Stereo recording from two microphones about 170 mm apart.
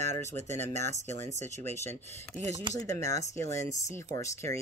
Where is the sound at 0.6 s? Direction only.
15° left (ahead or behind).